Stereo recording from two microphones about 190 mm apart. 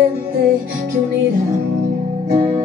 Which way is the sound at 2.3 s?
30° right (ahead or behind).